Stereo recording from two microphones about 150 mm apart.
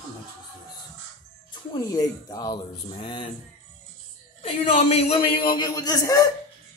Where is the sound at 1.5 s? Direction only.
25° left (ahead or behind).